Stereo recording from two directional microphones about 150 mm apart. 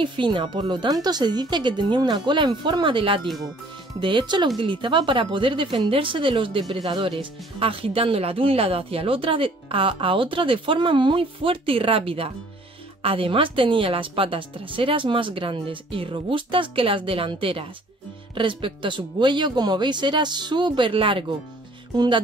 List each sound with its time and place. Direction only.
0.0 s speech: 35° right (ahead or behind)
3.3 s speech: centre (ahead or behind)
4.0 s speech: 30° right (ahead or behind)